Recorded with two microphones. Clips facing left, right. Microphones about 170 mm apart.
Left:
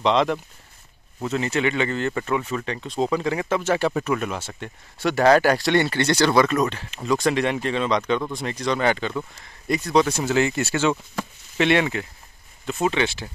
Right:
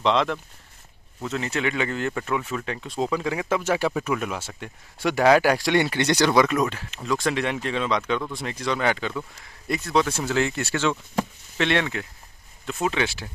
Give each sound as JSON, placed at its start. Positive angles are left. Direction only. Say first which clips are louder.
{"t": 0.0, "sound": "speech", "louder": "left 2 dB", "side_deg": 0}